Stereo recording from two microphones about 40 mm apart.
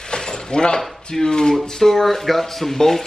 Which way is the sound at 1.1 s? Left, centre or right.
Centre.